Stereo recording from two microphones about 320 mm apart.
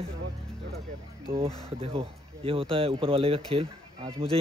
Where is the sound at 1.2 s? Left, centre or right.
Centre.